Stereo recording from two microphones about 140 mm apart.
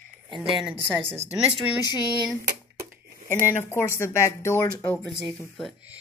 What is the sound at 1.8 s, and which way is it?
Speech, 25° left (ahead or behind).